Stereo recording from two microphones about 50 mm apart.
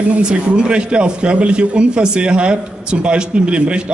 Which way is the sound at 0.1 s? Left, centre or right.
Right.